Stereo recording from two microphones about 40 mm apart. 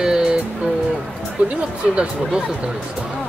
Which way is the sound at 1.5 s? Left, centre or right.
Right.